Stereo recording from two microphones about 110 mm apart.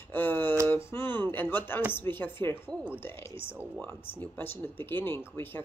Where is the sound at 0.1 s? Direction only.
15° left (ahead or behind).